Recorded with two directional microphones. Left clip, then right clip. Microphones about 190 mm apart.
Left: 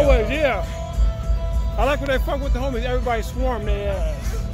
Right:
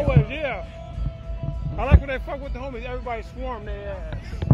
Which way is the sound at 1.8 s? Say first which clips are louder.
Left 6 dB; 5° left (ahead or behind).